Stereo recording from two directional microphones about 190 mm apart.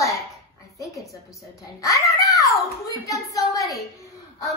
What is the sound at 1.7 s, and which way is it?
Speech, 15° left (ahead or behind).